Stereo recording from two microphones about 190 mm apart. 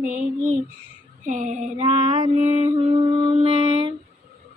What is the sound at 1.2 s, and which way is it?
Female singing, 40° right (ahead or behind).